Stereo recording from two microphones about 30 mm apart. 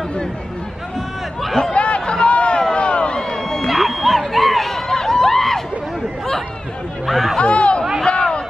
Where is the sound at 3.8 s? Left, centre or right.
Centre.